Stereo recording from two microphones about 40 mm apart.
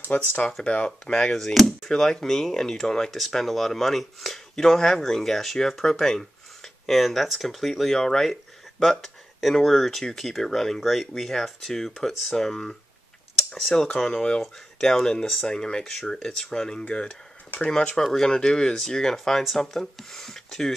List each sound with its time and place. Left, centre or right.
0.1 s speech: left
0.7 s speech: left
1.3 s speech: centre
13.4 s a sound: centre
13.9 s speech: centre
18.0 s speech: centre
18.3 s speech: centre